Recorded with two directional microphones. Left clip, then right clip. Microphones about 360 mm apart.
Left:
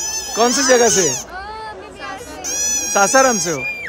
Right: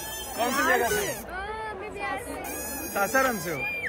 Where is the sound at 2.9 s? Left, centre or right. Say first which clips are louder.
Left 11 dB; centre.